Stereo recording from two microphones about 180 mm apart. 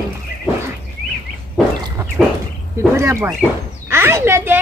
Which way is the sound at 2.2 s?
Centre (ahead or behind).